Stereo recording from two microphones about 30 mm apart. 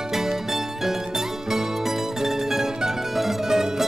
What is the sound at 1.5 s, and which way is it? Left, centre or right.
Music, centre.